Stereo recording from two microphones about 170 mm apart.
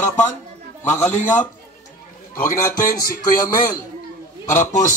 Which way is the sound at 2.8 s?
55° left (ahead or behind).